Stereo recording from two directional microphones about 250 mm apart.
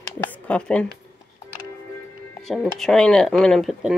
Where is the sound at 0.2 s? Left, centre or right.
Centre.